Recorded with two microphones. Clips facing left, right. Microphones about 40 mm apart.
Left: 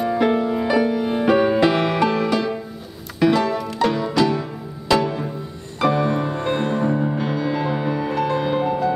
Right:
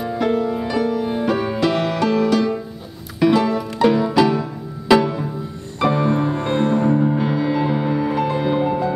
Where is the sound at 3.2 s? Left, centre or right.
Centre.